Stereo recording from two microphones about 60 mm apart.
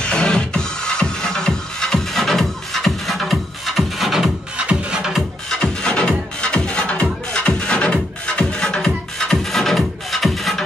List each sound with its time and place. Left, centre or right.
0.0 s music: centre
4.6 s music: centre
5.6 s music: centre